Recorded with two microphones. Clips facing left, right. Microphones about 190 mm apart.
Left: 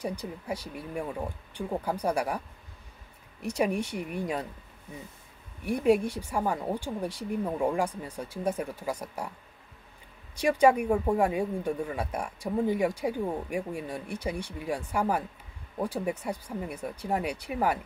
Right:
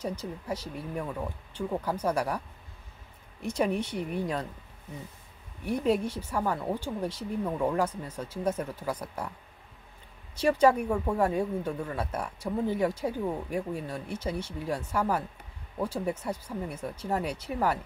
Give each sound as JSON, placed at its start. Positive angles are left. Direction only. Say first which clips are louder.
{"t": 0.0, "sound": "speech", "louder": "even", "side_deg": 10}
{"t": 3.5, "sound": "speech", "louder": "even", "side_deg": 10}
{"t": 5.7, "sound": "speech", "louder": "left 3 dB", "side_deg": 10}
{"t": 10.3, "sound": "speech", "louder": "even", "side_deg": 10}